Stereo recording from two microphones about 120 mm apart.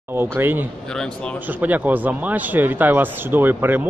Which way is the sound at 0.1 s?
20° right (ahead or behind).